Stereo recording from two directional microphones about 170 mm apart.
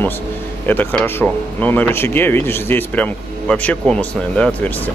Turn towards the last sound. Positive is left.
turn(degrees=5)  # may be behind; listen again after turning